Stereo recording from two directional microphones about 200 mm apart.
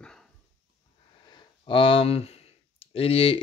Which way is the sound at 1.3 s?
25° left (ahead or behind).